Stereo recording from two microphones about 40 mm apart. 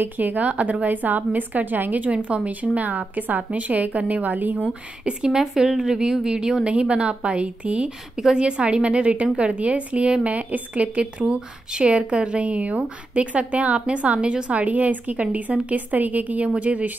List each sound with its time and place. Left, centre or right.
0.2 s a woman's voice: right
2.1 s a woman's voice: right
5.0 s a woman's voice: centre
6.6 s a woman's voice: right